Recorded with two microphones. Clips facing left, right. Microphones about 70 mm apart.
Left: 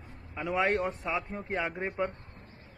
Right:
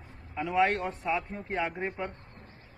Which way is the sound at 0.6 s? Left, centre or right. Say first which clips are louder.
Right 1 dB; centre.